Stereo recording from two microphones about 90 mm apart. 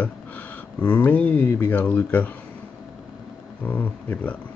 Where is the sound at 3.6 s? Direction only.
20° left (ahead or behind).